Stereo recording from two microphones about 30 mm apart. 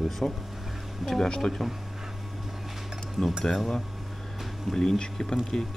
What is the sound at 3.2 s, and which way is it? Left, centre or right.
Speech, centre.